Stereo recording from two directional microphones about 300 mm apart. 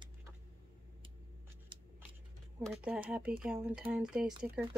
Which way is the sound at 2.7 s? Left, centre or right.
Centre.